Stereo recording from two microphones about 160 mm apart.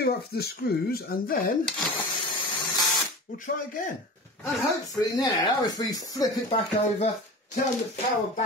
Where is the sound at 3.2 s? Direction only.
60° left (ahead or behind).